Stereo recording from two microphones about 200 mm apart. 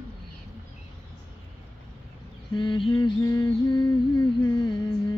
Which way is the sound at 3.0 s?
15° left (ahead or behind).